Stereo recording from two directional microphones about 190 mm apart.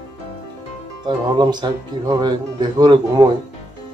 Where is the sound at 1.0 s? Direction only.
20° right (ahead or behind).